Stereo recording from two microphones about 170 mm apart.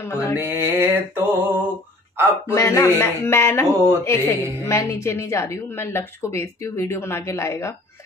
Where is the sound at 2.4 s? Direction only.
15° left (ahead or behind).